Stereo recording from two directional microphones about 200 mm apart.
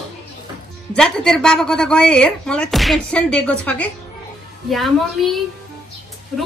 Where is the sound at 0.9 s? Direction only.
5° left (ahead or behind).